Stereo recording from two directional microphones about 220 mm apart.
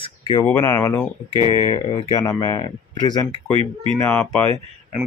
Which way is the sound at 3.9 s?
10° left (ahead or behind).